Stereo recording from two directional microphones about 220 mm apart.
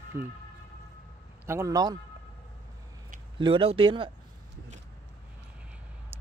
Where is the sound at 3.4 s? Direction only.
25° right (ahead or behind).